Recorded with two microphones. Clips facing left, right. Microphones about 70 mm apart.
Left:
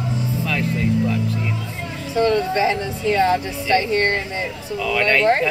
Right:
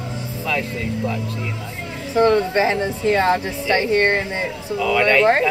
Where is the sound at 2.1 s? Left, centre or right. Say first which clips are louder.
Right 2 dB; right.